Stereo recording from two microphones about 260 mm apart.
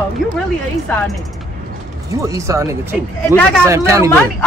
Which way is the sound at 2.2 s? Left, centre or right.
Centre.